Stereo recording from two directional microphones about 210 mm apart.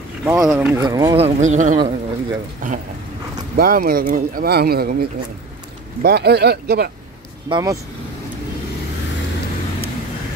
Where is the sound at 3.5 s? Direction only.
45° right (ahead or behind).